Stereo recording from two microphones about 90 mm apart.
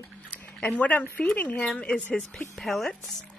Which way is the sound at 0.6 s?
15° left (ahead or behind).